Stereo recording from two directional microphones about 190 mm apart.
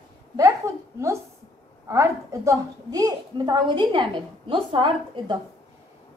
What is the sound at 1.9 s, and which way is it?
A woman's voice, 15° right (ahead or behind).